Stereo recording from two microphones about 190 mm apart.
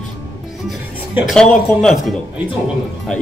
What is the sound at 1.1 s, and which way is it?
Speech, centre (ahead or behind).